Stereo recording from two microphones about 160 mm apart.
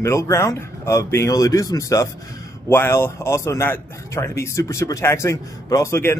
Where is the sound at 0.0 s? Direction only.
15° left (ahead or behind).